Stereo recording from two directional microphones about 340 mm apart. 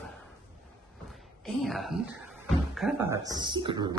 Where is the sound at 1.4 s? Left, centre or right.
Centre.